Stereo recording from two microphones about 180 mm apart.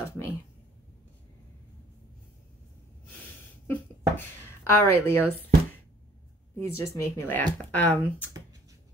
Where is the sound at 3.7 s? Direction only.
15° left (ahead or behind).